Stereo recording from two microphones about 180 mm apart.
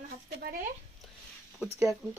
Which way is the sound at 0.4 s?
55° right (ahead or behind).